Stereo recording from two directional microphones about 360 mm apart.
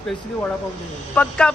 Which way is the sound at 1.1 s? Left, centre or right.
Centre.